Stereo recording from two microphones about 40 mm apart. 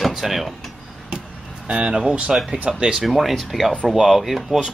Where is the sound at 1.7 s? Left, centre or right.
Right.